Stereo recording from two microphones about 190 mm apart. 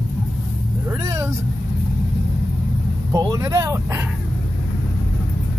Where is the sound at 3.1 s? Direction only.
15° right (ahead or behind).